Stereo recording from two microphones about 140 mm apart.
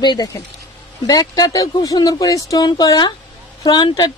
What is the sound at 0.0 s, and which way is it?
Speech, 30° left (ahead or behind).